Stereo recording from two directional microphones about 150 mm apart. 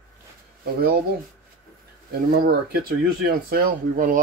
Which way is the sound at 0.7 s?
90° right.